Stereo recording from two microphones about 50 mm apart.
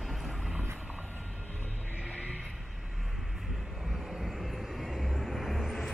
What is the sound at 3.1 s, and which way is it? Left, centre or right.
Vehicle, centre.